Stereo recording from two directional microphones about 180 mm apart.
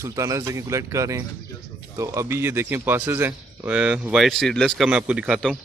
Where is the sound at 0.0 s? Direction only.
15° right (ahead or behind).